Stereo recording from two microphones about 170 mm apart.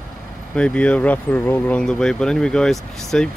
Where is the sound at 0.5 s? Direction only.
5° left (ahead or behind).